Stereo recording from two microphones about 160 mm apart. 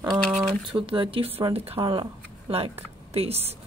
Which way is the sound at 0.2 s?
Centre (ahead or behind).